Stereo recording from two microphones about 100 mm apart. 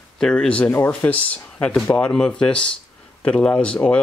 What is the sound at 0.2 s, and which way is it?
Speech, 5° left (ahead or behind).